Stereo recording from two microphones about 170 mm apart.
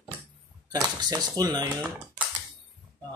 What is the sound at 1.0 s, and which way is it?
Speech, 25° right (ahead or behind).